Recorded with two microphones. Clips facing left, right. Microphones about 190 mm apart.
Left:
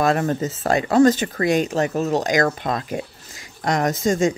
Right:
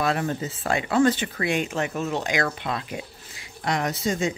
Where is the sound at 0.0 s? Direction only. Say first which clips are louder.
Left 5 dB; 45° left (ahead or behind).